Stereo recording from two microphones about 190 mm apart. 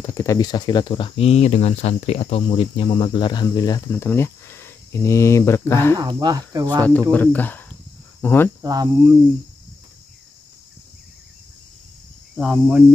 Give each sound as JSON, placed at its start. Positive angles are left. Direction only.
{"t": 0.0, "sound": "speech", "side_deg": 15}
{"t": 5.9, "sound": "cricket", "side_deg": -20}
{"t": 7.1, "sound": "speech", "side_deg": 10}
{"t": 8.6, "sound": "cricket", "side_deg": -20}
{"t": 12.4, "sound": "cricket", "side_deg": -5}